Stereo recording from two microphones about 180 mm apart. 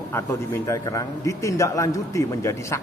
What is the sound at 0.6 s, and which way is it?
A man's voice, 20° left (ahead or behind).